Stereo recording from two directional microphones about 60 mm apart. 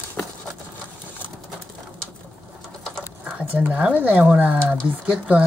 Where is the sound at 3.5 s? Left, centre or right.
Right.